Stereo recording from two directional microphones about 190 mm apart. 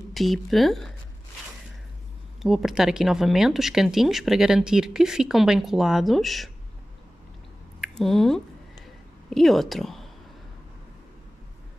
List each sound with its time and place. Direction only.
0.1 s speech: centre (ahead or behind)
2.4 s speech: centre (ahead or behind)
7.8 s speech: centre (ahead or behind)